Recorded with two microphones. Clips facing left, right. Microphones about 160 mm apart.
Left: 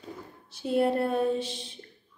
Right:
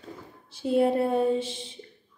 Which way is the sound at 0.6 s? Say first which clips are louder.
Right 2 dB; 15° right (ahead or behind).